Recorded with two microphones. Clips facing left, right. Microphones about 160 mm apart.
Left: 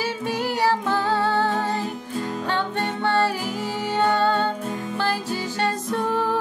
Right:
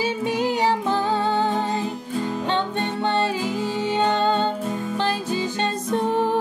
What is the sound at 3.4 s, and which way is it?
Music, 10° left (ahead or behind).